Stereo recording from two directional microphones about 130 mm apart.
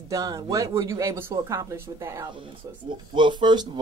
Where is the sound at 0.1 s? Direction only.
25° right (ahead or behind).